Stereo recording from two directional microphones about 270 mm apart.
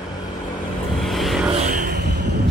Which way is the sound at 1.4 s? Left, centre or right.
Right.